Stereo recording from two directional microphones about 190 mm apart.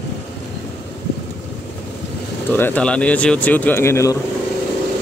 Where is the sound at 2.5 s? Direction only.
10° left (ahead or behind).